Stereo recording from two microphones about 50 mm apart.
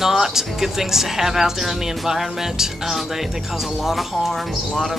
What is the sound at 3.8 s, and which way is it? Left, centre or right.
Speech, centre.